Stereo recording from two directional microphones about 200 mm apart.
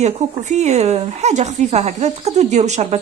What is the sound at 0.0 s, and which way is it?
A woman's voice, 35° right (ahead or behind).